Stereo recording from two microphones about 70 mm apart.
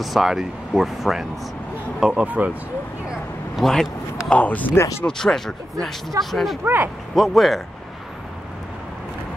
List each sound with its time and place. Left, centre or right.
0.0 s speech: centre; by 2.5 s right
3.5 s speech: centre
4.3 s speech: left
5.0 s speech: centre
6.6 s speech: right
7.2 s speech: centre